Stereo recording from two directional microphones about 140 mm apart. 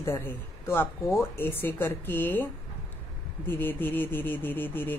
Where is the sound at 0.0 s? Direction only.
15° left (ahead or behind).